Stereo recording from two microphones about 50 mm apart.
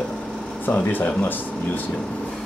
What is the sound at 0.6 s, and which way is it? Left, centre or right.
Speech, left.